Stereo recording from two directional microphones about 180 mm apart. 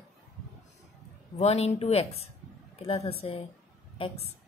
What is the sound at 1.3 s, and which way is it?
Speech, 35° left (ahead or behind).